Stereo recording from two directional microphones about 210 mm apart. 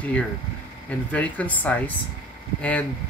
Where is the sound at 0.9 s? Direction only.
5° left (ahead or behind).